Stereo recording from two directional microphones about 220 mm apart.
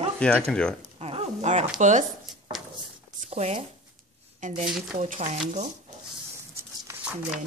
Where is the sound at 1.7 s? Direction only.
35° right (ahead or behind).